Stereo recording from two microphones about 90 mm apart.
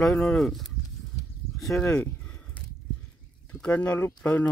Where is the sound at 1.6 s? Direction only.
5° left (ahead or behind).